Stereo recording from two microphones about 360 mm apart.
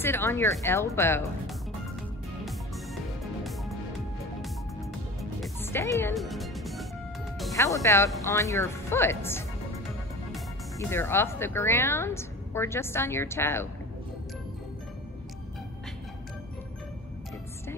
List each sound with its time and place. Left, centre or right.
0.0 s speech: centre
5.4 s music: centre
7.3 s speech: centre